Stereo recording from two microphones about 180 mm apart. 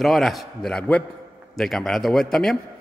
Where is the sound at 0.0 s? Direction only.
Centre (ahead or behind).